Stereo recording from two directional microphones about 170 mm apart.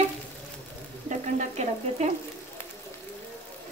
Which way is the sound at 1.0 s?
45° right (ahead or behind).